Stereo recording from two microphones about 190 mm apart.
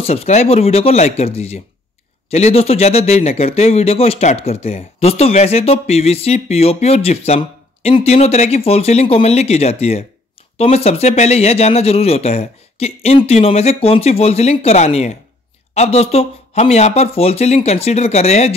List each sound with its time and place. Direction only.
0.0 s speech: 35° left (ahead or behind)